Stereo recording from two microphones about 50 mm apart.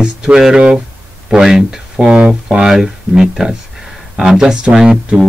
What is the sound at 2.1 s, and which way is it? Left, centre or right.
Speech, right.